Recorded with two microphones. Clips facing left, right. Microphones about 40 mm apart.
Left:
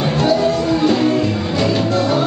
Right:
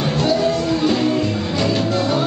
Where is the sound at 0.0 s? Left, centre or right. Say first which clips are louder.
Left 2 dB; centre.